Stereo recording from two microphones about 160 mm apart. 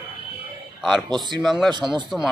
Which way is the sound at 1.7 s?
25° right (ahead or behind).